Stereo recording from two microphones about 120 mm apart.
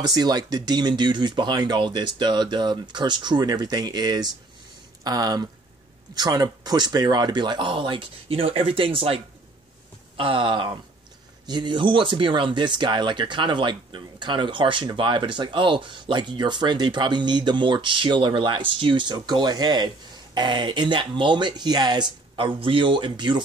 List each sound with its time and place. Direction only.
0.0 s speech: 35° right (ahead or behind)